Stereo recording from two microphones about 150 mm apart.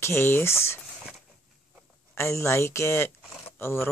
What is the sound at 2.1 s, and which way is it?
Speech, 20° left (ahead or behind).